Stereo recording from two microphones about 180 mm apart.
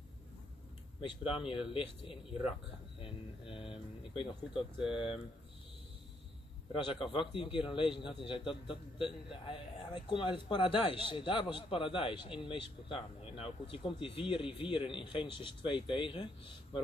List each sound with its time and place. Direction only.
1.5 s speech: 30° left (ahead or behind)
6.7 s speech: 30° left (ahead or behind)